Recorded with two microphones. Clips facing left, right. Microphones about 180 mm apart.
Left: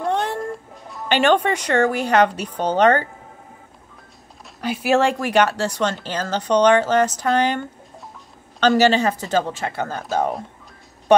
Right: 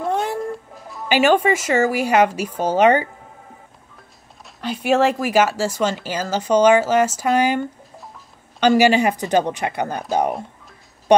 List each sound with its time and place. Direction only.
0.0 s speech: centre (ahead or behind)
4.6 s speech: 5° left (ahead or behind); by 10.0 s 15° right (ahead or behind)